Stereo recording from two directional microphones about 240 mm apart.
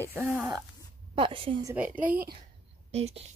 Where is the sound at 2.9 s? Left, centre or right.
Right.